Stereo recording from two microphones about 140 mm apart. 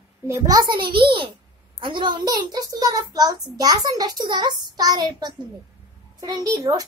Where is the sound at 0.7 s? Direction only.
90° right.